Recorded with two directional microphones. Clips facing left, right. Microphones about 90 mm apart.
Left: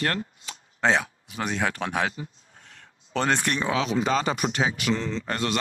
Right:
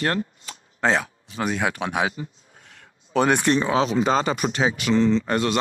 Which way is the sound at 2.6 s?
10° right (ahead or behind).